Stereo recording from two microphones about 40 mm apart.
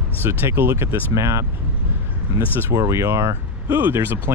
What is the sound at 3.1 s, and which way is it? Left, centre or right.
Speech, right.